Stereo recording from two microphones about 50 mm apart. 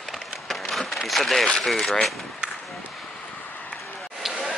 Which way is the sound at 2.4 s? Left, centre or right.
Right.